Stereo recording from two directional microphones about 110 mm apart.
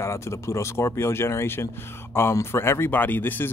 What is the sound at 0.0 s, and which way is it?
A man's voice, 25° left (ahead or behind).